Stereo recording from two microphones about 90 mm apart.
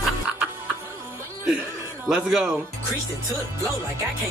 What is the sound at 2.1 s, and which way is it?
Speech, 10° right (ahead or behind).